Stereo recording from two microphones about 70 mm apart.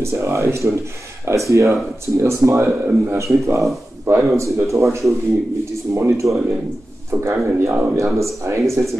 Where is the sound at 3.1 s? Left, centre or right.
Right.